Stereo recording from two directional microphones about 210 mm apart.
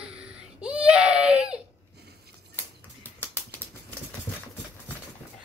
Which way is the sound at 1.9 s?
50° right (ahead or behind).